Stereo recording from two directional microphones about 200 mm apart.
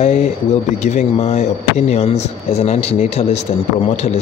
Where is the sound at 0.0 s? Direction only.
35° left (ahead or behind).